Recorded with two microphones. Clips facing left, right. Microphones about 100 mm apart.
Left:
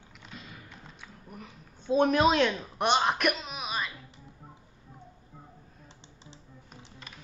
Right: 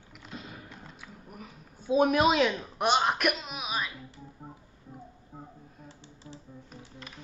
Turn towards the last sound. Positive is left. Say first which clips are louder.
# right 4 dB
turn(degrees=20)  # may be behind; listen again after turning